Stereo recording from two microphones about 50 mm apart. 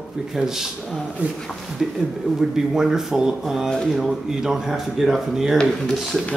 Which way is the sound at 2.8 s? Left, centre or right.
Centre.